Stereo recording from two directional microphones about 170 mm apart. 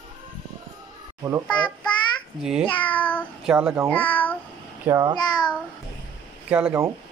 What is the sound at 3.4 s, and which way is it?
Speech, 10° right (ahead or behind).